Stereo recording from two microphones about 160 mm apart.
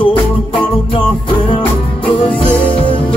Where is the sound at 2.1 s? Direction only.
35° left (ahead or behind).